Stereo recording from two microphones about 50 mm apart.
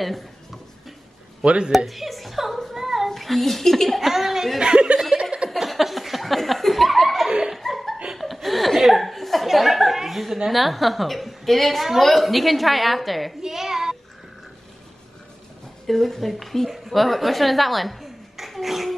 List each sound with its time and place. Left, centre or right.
1.4 s speech: right
1.9 s a sound: centre
3.1 s a woman's voice: centre
4.6 s chuckle: centre
5.2 s a sound: centre
5.5 s laughter: centre
7.2 s laughter: centre
7.5 s laughter: centre
8.1 s speech: centre
13.4 s child singing: centre
15.9 s a woman's voice: centre